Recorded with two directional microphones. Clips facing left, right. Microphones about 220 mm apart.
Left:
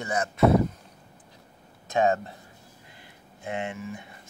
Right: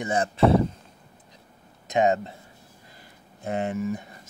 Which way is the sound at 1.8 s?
20° right (ahead or behind).